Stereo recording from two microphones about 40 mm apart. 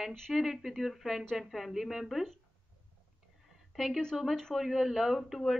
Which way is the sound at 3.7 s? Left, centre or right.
Centre.